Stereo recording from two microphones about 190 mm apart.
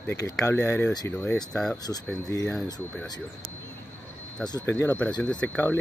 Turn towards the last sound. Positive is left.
turn(degrees=10)  # may be behind; listen again after turning